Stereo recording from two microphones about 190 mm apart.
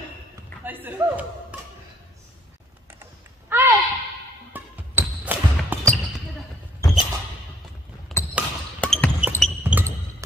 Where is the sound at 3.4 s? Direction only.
10° right (ahead or behind).